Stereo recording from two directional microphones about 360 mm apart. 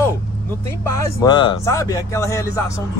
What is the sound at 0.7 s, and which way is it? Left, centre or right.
Speech, centre.